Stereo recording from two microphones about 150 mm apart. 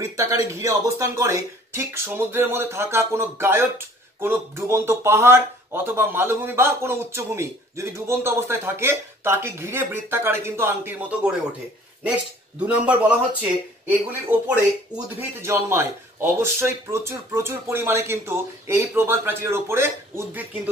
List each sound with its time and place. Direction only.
0.0 s speech: 20° right (ahead or behind)
12.5 s speech: 10° right (ahead or behind)
15.1 s speech: 15° right (ahead or behind)